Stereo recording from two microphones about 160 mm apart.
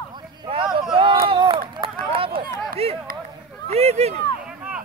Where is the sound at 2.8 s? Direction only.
40° right (ahead or behind).